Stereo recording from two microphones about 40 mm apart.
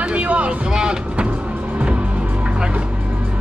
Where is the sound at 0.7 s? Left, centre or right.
Right.